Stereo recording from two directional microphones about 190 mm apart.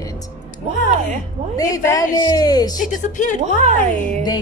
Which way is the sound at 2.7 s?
45° left (ahead or behind).